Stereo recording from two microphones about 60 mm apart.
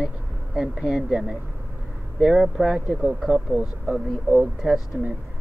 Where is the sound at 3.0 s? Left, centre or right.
Centre.